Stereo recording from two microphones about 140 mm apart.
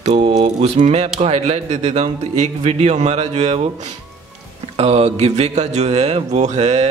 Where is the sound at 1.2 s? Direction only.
50° right (ahead or behind).